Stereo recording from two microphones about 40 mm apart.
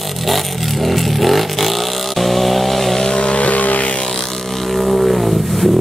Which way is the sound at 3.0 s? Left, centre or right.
Left.